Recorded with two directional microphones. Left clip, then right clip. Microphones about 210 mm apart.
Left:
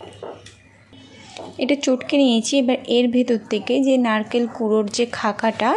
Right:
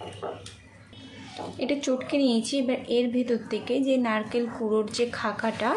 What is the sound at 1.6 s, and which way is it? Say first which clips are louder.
A woman's voice: left 8 dB; 35° left (ahead or behind).